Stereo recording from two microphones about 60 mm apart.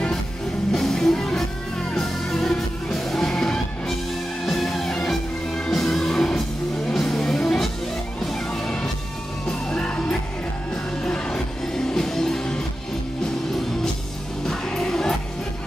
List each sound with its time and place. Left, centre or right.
0.7 s music: centre
9.7 s music: centre
14.4 s music: centre